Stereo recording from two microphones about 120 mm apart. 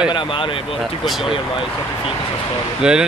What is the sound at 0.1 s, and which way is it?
Speech, 45° left (ahead or behind).